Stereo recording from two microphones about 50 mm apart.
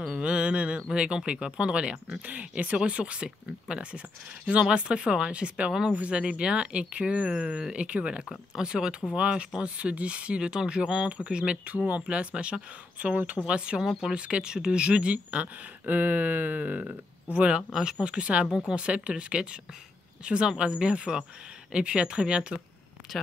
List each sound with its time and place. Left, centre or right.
0.1 s mantra: right
0.9 s speech: right
5.7 s speech: centre
5.9 s speech: right
7.2 s speech: centre; by 17.5 s right
17.5 s speech: centre